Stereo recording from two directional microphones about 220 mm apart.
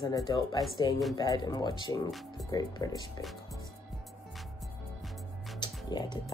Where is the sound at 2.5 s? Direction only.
15° left (ahead or behind).